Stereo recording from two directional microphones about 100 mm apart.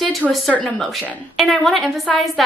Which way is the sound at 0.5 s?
15° left (ahead or behind).